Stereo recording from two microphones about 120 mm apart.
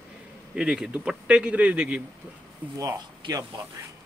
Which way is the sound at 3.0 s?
35° right (ahead or behind).